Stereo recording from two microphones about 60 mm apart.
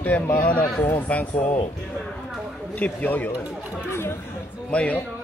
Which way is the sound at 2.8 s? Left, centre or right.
Left.